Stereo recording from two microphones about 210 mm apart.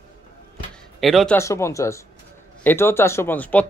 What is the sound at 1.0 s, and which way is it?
Speech, centre (ahead or behind).